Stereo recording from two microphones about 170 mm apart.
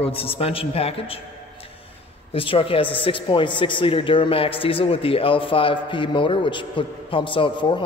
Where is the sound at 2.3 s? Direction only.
30° left (ahead or behind).